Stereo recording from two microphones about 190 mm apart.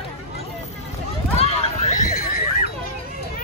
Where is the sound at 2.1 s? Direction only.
50° left (ahead or behind).